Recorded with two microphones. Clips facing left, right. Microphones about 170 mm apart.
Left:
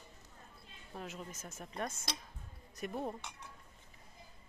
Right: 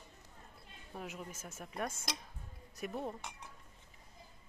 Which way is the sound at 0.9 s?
10° right (ahead or behind).